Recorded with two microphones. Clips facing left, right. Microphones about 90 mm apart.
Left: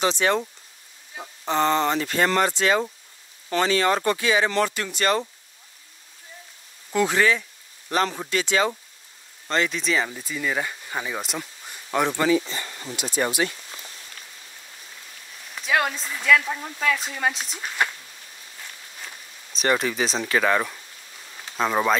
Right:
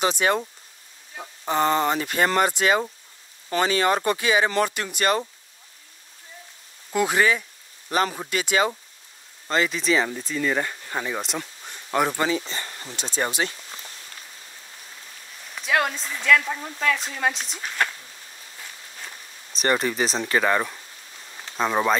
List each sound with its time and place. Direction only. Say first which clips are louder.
0.0 s speech: even; 15° right (ahead or behind)
1.1 s a sound: even; centre (ahead or behind)
1.5 s speech: even; 15° right (ahead or behind)
6.9 s speech: even; 10° right (ahead or behind)
9.5 s speech: right 1 dB; centre (ahead or behind)
12.4 s speech: left 1 dB; 40° right (ahead or behind)
15.5 s speech: even; centre (ahead or behind)
19.0 s speech: even; centre (ahead or behind)